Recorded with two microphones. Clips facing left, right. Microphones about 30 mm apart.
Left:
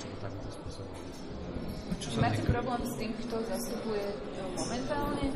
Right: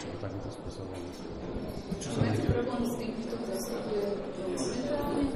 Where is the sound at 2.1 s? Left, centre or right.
Left.